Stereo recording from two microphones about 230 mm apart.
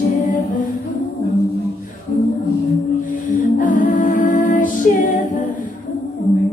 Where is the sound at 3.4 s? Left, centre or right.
Left.